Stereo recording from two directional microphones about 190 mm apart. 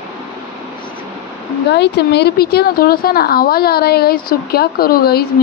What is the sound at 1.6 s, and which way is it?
A woman's voice, 60° left (ahead or behind).